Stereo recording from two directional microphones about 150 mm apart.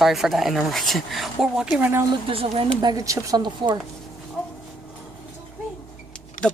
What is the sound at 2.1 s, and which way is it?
Speech, 35° right (ahead or behind).